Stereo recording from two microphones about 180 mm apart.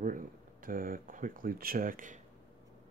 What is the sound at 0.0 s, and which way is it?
Speech, 50° right (ahead or behind).